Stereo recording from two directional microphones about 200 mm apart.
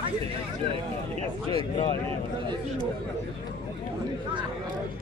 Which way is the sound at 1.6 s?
25° left (ahead or behind).